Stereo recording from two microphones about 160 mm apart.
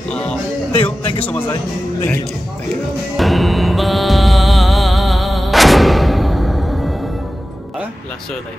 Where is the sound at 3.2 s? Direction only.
Centre (ahead or behind).